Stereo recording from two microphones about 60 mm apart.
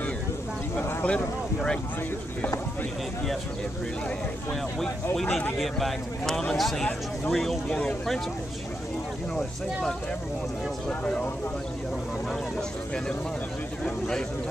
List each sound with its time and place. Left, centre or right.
1.0 s speech: centre
5.1 s speech: centre
10.9 s speech: centre
13.8 s speech: centre